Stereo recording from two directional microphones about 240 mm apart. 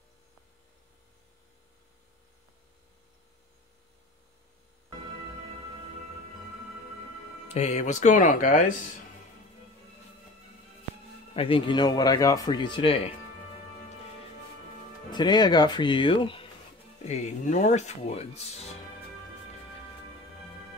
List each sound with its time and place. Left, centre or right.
7.4 s speech: left
11.3 s speech: left
15.0 s speech: centre